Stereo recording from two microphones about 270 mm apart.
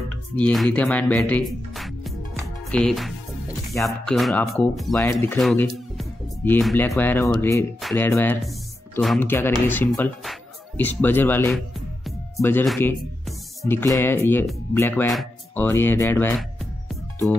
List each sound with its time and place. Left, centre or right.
0.4 s speech: centre
4.1 s speech: centre